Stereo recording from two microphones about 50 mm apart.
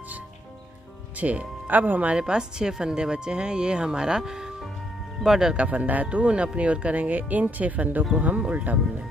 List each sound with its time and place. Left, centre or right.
1.2 s speech: right
2.1 s speech: centre
5.6 s speech: right